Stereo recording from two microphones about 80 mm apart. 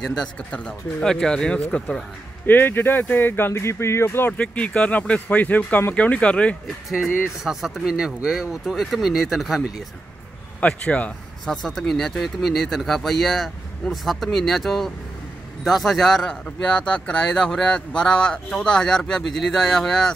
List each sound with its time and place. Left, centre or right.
0.0 s speech: centre
2.4 s speech: left
4.3 s speech: centre
6.9 s speech: centre
10.6 s speech: centre
11.4 s speech: centre